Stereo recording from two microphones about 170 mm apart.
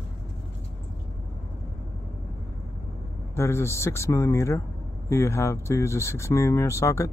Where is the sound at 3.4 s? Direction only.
15° left (ahead or behind).